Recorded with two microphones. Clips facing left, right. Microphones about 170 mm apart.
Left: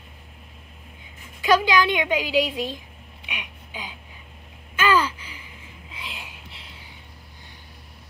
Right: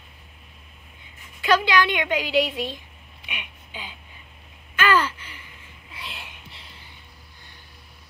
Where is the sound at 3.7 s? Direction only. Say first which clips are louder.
Left 2 dB; 10° left (ahead or behind).